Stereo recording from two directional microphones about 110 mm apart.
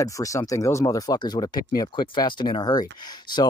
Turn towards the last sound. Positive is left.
turn(degrees=40)  # may be behind; listen again after turning